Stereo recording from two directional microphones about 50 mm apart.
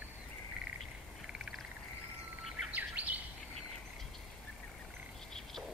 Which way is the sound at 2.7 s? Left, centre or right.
Right.